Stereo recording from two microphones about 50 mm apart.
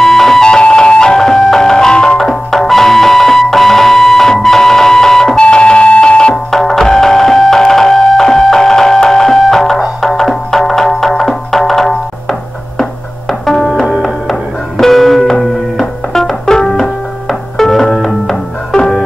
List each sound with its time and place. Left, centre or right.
0.0 s music: centre
5.4 s music: left
6.3 s music: centre
13.3 s music: centre
13.7 s music: centre